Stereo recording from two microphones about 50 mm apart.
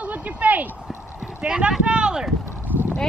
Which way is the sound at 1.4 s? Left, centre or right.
Centre.